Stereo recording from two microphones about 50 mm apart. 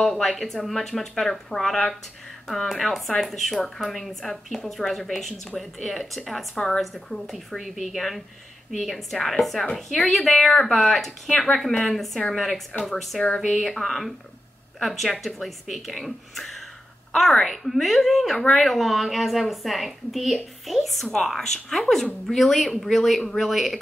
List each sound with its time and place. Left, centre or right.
0.0 s speech: centre
13.2 s speech: centre
13.5 s speech: centre